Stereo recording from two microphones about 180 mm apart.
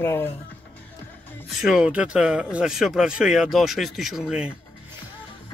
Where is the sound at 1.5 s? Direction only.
Centre (ahead or behind).